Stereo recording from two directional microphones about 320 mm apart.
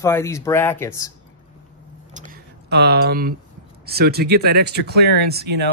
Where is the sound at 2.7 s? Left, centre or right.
Right.